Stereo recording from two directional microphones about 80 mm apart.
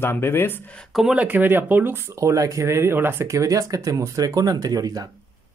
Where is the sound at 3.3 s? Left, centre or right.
Right.